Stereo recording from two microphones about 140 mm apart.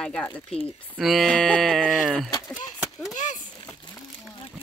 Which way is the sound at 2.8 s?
Centre (ahead or behind).